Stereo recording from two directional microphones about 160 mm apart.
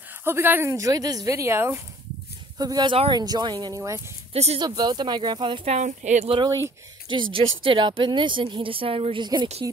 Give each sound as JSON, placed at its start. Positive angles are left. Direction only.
{"t": 0.2, "sound": "speech", "side_deg": -15}
{"t": 4.3, "sound": "speech", "side_deg": -40}
{"t": 4.6, "sound": "speech", "side_deg": -25}
{"t": 5.8, "sound": "speech", "side_deg": -50}
{"t": 7.1, "sound": "speech", "side_deg": -30}